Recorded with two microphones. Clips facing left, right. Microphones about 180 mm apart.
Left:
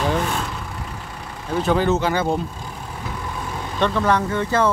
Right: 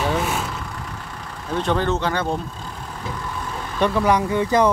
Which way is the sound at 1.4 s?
5° left (ahead or behind).